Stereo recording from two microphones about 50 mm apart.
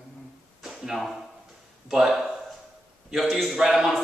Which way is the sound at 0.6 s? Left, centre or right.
Centre.